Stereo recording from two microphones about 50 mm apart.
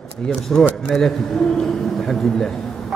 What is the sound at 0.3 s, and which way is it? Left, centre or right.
A man's voice, centre.